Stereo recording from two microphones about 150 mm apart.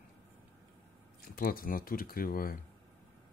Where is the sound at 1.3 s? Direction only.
75° left (ahead or behind).